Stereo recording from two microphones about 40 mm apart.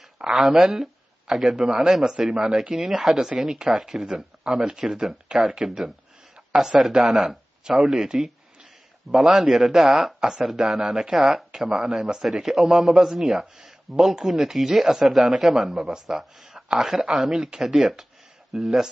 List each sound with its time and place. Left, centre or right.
0.3 s a man's voice: centre
7.0 s a man's voice: centre
15.7 s a man's voice: centre